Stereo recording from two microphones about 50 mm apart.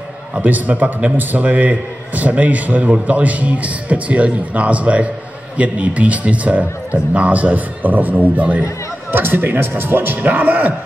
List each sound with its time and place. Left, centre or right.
0.4 s a man's voice: right
9.1 s a man's voice: right